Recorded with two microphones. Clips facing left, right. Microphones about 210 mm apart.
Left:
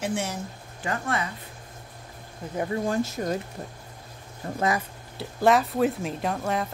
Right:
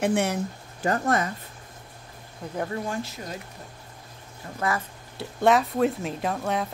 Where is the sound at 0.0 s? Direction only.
60° right (ahead or behind).